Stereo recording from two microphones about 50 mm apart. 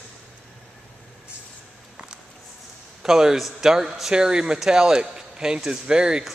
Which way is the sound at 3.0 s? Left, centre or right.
Centre.